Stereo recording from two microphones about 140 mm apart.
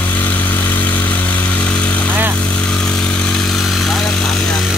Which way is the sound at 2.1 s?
15° right (ahead or behind).